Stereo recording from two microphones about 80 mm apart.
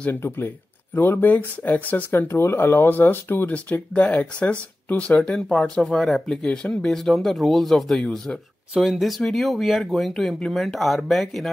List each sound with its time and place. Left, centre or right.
0.9 s speech: left; by 11.4 s centre